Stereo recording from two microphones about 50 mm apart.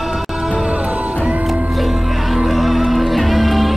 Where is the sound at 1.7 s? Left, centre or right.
Centre.